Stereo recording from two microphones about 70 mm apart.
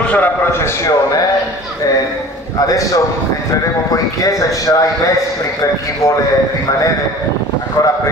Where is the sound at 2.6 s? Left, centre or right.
Left.